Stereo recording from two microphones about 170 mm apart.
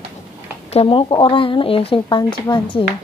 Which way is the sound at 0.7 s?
30° left (ahead or behind).